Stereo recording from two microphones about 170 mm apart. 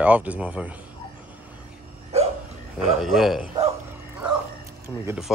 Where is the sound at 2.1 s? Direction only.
40° right (ahead or behind).